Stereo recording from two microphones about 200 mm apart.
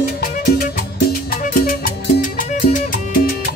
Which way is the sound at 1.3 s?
45° left (ahead or behind).